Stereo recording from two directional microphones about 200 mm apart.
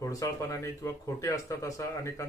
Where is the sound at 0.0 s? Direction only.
15° left (ahead or behind).